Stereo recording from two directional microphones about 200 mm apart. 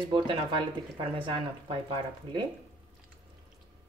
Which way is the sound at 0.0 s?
25° right (ahead or behind).